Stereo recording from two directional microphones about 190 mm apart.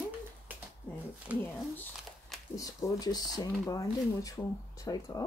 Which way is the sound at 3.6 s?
15° left (ahead or behind).